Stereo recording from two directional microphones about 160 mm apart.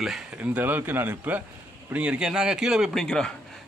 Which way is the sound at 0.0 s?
5° right (ahead or behind).